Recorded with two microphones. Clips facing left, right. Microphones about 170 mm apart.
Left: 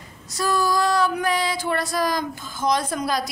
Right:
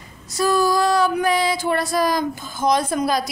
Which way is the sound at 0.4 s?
10° right (ahead or behind).